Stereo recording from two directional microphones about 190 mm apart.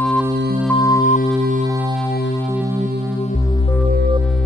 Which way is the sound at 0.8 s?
20° left (ahead or behind).